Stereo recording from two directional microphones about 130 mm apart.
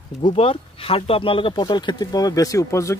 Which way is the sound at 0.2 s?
45° left (ahead or behind).